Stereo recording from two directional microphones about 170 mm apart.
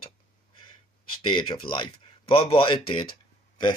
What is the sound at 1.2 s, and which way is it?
Speech, 30° left (ahead or behind).